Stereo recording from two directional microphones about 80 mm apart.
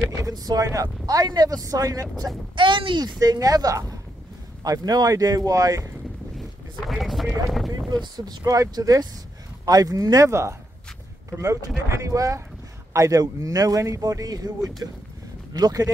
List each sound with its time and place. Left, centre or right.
0.2 s speech: right
2.5 s speech: right
3.0 s speech: right
6.9 s speech: centre
7.9 s speech: right
8.5 s speech: right
11.9 s speech: right